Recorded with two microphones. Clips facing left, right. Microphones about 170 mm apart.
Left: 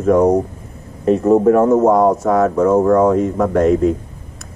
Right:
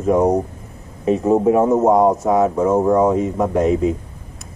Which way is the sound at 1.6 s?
20° right (ahead or behind).